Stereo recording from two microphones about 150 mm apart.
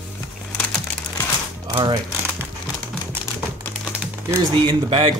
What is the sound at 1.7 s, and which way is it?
Speech, 35° right (ahead or behind).